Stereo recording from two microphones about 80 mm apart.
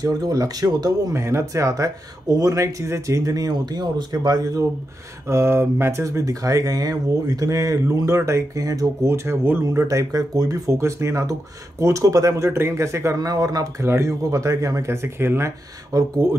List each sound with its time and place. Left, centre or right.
0.0 s speech: right
1.1 s speech: right
5.3 s speech: right
13.2 s speech: right
13.8 s speech: right